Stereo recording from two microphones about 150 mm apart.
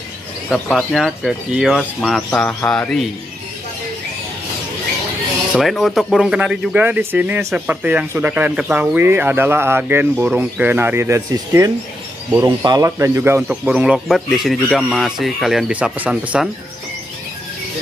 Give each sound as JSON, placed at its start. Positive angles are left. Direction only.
{"t": 0.5, "sound": "speech", "side_deg": 0}
{"t": 5.5, "sound": "speech", "side_deg": 0}